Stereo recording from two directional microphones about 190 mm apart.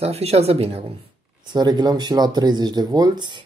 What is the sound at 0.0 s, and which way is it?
Speech, 30° right (ahead or behind).